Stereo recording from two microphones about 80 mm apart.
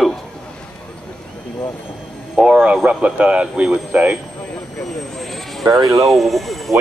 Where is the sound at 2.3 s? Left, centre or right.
Centre.